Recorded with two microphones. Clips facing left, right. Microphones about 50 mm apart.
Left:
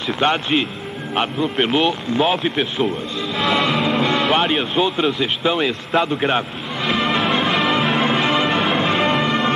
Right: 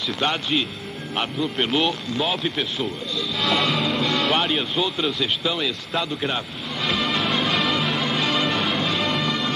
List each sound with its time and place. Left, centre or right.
0.1 s speech: left
4.5 s speech: left
6.8 s music: centre
7.9 s change ringing: left
8.4 s change ringing: centre
8.7 s music: left